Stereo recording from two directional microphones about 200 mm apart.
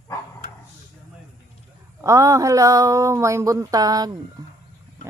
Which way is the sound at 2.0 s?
15° right (ahead or behind).